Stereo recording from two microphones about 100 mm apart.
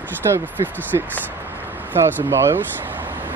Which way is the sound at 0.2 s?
35° right (ahead or behind).